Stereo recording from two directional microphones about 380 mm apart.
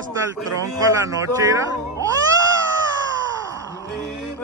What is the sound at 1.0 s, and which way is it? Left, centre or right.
Music, centre.